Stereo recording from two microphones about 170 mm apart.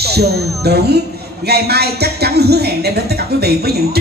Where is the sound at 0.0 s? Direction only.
70° right (ahead or behind).